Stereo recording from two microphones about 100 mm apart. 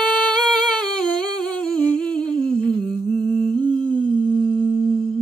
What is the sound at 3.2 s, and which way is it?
Humming, 50° right (ahead or behind).